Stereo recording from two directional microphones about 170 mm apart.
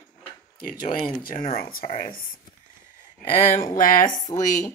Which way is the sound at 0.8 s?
55° left (ahead or behind).